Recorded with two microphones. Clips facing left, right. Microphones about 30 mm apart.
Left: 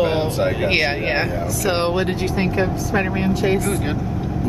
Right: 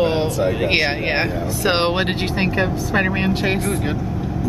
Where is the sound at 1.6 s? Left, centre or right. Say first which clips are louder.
Right 2 dB; right.